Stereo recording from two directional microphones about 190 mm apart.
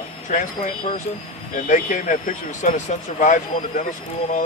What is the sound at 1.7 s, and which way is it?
Speech, 45° left (ahead or behind).